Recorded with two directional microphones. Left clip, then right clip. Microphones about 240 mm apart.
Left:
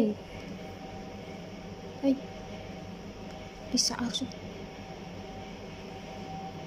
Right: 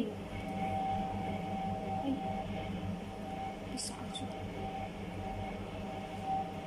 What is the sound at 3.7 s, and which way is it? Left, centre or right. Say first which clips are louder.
Speech: left 12 dB; left.